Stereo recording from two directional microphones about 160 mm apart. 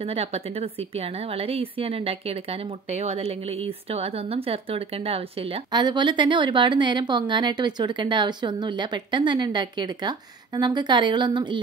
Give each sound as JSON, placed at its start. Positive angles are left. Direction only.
{"t": 0.0, "sound": "a woman's voice", "side_deg": -40}